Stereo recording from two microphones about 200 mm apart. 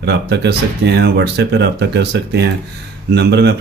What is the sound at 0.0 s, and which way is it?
Speech, 55° right (ahead or behind).